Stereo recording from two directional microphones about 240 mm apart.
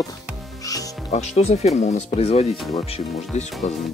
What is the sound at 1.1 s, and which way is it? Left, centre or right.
Speech, left.